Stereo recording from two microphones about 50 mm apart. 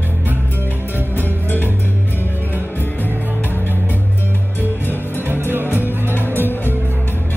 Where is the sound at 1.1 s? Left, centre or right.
Left.